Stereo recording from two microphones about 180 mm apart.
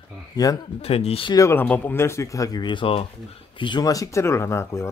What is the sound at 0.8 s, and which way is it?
Speech, 35° left (ahead or behind).